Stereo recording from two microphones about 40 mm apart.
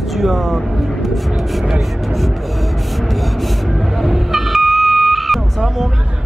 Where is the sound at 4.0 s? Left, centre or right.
Centre.